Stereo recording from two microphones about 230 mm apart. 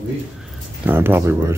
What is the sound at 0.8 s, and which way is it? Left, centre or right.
Speech, centre.